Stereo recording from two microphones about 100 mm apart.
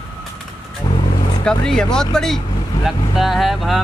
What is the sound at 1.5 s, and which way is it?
Speech, 5° left (ahead or behind).